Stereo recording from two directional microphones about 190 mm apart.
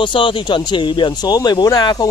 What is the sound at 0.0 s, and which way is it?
Speech, 25° left (ahead or behind).